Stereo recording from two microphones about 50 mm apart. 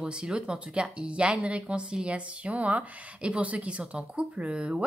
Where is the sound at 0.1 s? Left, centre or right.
Centre.